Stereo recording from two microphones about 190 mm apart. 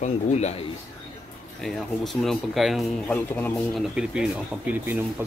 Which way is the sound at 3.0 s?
10° left (ahead or behind).